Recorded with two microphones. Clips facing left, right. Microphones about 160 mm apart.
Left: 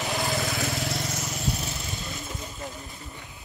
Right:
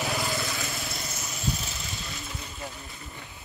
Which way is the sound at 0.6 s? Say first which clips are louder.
Left 6 dB; 75° left (ahead or behind).